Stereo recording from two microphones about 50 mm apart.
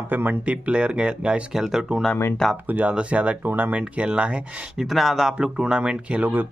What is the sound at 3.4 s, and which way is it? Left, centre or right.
Speech, right.